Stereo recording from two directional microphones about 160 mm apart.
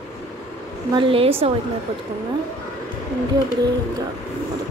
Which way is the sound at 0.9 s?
35° right (ahead or behind).